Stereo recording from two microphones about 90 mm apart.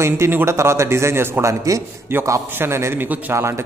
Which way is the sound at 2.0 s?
25° right (ahead or behind).